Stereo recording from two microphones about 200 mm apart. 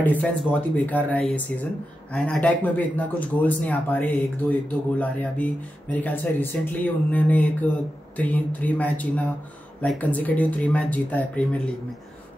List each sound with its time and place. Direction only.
0.0 s speech: 10° left (ahead or behind)